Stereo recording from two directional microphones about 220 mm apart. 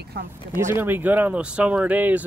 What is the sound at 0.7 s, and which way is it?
Speech, 10° right (ahead or behind).